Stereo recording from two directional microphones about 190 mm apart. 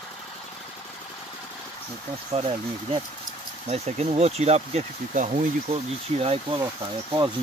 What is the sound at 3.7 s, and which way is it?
Speech, 35° right (ahead or behind).